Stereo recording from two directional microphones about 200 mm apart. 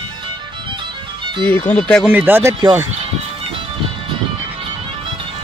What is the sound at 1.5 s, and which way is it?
Speech, 5° left (ahead or behind).